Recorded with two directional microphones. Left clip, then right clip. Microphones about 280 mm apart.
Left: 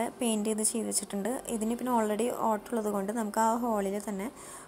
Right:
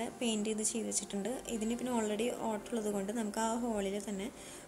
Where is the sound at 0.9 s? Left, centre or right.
Centre.